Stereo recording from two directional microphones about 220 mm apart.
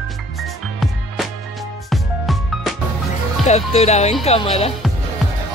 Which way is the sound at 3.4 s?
30° left (ahead or behind).